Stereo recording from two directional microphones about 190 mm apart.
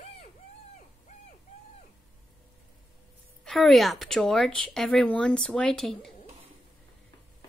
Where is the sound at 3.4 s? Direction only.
Centre (ahead or behind).